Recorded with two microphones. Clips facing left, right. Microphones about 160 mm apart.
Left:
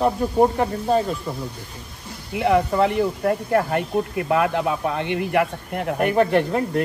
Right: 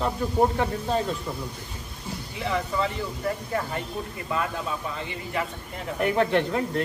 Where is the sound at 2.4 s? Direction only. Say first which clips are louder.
Left 9 dB; 65° left (ahead or behind).